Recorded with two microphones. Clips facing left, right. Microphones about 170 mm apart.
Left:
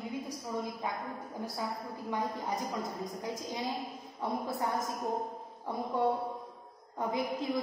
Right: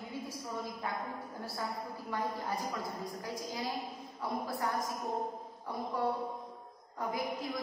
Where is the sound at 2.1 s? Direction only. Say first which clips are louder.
Left 2 dB; 20° left (ahead or behind).